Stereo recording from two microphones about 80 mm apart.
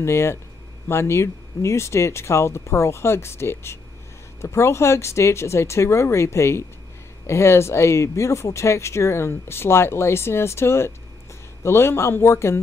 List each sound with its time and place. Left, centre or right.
0.0 s speech: left